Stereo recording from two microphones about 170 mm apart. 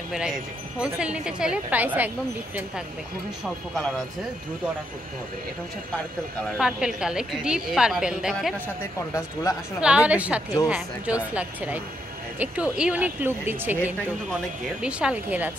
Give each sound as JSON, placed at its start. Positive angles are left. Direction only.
{"t": 0.1, "sound": "a woman's voice", "side_deg": -5}
{"t": 6.6, "sound": "a woman's voice", "side_deg": -5}
{"t": 9.1, "sound": "speech", "side_deg": 20}
{"t": 9.8, "sound": "speech", "side_deg": -5}